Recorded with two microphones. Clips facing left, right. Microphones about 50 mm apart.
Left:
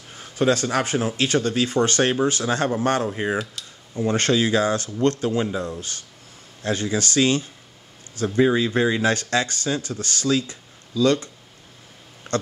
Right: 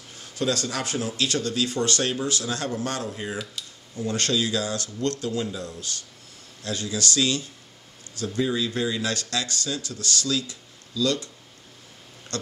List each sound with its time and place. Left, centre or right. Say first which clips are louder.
0.1 s speech: left 6 dB; left